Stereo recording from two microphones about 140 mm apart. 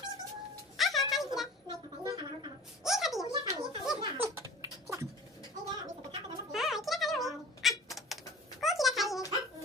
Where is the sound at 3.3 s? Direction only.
35° right (ahead or behind).